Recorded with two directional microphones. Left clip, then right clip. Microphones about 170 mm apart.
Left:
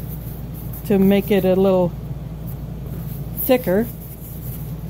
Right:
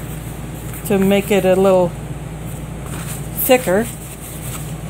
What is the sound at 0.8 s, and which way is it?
Speech, 20° left (ahead or behind).